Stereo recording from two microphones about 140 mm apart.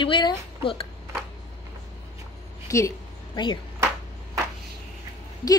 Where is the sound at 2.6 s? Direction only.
20° left (ahead or behind).